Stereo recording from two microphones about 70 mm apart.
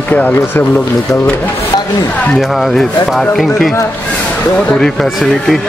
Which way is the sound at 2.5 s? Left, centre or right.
Centre.